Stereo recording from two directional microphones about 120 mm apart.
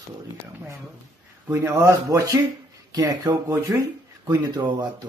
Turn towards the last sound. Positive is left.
turn(degrees=-35)  # may be behind; listen again after turning